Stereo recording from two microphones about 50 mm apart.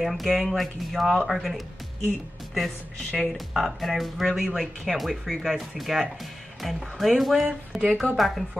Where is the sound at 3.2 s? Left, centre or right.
Centre.